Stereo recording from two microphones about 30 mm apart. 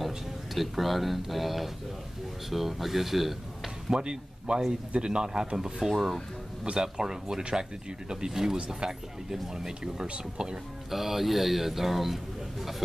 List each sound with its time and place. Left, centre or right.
0.6 s speech: centre
3.9 s speech: right
5.6 s a man's voice: centre
6.6 s a man's voice: right
10.9 s a man's voice: centre